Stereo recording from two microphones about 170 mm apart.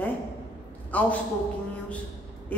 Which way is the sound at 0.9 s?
10° left (ahead or behind).